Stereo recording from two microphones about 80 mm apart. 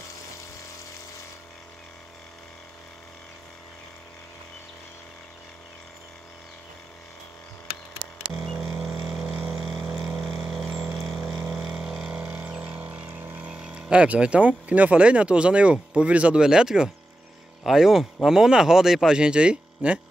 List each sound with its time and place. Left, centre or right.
8.8 s vehicle: centre
12.2 s a sound: centre
13.6 s speech: centre